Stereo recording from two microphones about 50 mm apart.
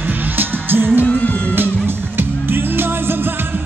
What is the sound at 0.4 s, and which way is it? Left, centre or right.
Music, right.